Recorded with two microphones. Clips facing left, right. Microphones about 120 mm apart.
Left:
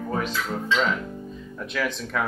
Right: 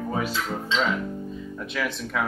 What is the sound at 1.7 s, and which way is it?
Speech, centre (ahead or behind).